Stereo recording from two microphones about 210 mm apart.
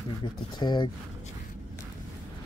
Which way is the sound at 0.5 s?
20° left (ahead or behind).